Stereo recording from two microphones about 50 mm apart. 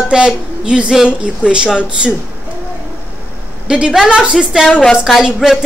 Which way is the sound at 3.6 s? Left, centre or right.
Centre.